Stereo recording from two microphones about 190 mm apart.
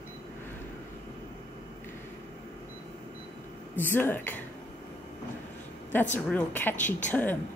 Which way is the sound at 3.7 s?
10° left (ahead or behind).